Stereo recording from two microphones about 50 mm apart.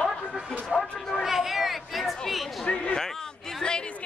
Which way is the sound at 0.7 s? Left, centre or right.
Centre.